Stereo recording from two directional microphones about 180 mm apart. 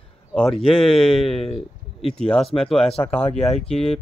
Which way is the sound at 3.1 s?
30° left (ahead or behind).